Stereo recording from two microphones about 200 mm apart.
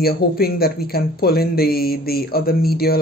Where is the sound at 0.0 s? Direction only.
50° left (ahead or behind).